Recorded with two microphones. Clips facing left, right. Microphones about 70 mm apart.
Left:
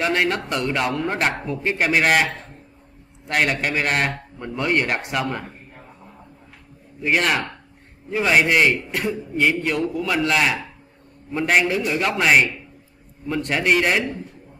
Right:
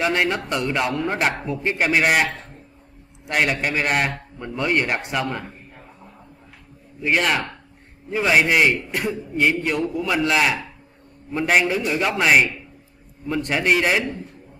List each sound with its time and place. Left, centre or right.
0.0 s a man's voice: centre
7.0 s a man's voice: centre